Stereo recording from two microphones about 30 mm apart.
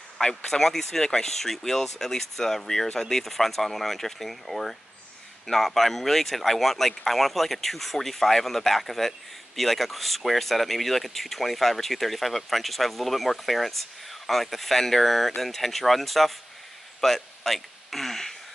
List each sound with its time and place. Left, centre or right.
0.2 s speech: left
0.5 s speech: centre